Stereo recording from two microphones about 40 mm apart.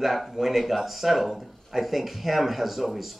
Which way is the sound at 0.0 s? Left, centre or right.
Centre.